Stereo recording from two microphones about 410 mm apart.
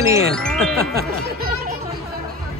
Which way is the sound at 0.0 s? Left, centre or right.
Centre.